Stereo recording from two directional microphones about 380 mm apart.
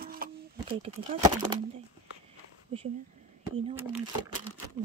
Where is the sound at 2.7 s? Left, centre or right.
Centre.